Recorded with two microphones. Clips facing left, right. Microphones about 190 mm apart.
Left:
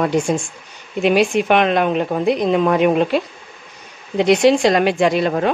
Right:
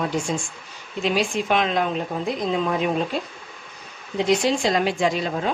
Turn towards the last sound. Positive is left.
turn(degrees=65)  # may be behind; listen again after turning